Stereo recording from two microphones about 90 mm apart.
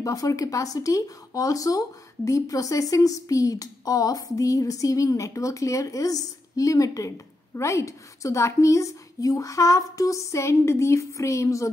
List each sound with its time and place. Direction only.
0.0 s speech: 40° left (ahead or behind)